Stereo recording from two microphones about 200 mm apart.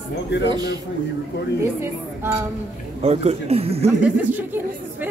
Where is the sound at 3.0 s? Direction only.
30° right (ahead or behind).